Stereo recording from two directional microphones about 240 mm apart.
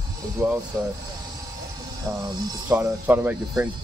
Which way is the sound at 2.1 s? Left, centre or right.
Centre.